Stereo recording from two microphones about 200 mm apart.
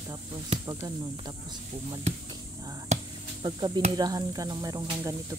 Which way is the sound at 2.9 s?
35° right (ahead or behind).